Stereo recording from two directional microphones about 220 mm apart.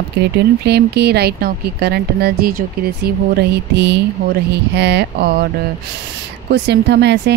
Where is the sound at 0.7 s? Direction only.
50° right (ahead or behind).